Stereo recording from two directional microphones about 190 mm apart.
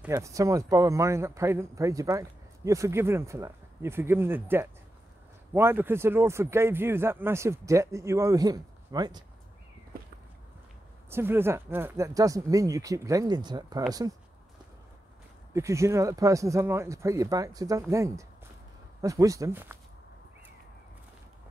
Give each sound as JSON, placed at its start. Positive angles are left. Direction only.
{"t": 0.0, "sound": "speech", "side_deg": -15}
{"t": 11.1, "sound": "speech", "side_deg": -10}
{"t": 15.5, "sound": "speech", "side_deg": -15}